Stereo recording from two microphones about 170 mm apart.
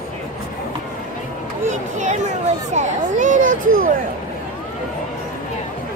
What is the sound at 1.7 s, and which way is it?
A child's voice, 45° right (ahead or behind).